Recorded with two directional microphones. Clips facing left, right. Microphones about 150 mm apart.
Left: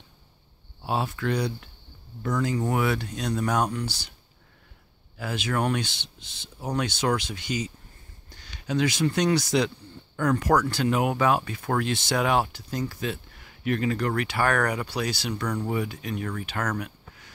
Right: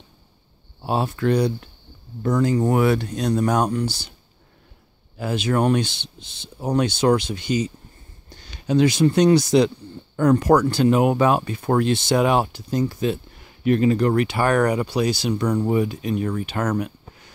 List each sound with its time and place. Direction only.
0.8 s speech: 35° right (ahead or behind)
5.1 s speech: 30° right (ahead or behind)